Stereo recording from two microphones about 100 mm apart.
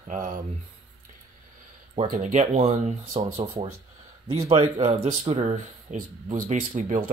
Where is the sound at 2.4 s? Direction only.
90° right.